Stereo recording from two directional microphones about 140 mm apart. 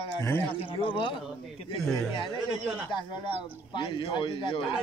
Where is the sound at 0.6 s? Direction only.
40° left (ahead or behind).